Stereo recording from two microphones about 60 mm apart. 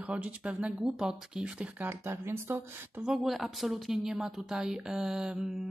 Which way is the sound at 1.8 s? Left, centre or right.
Right.